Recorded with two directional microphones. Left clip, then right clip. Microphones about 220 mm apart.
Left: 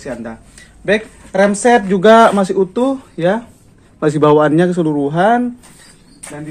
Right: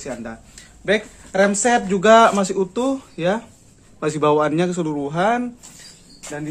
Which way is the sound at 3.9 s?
30° left (ahead or behind).